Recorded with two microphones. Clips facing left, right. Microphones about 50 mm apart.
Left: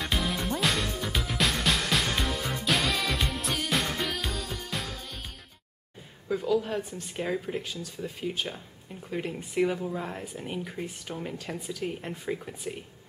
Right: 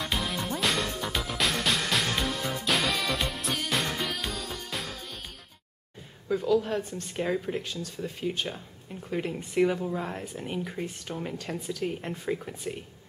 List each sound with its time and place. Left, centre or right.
0.0 s music: centre
6.2 s speech: centre